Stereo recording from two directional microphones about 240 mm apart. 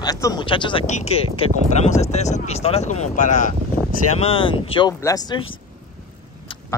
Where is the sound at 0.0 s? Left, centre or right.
Centre.